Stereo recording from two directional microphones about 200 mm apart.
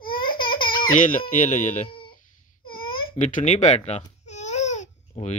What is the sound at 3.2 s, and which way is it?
Speech, 35° left (ahead or behind).